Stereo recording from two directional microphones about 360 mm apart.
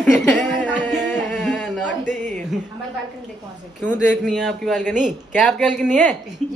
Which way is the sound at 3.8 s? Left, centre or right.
Centre.